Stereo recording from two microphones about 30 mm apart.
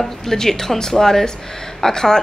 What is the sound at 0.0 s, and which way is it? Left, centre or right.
Speech, centre.